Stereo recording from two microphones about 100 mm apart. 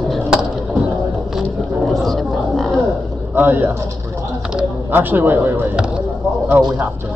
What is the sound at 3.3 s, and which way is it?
Speech, 20° right (ahead or behind).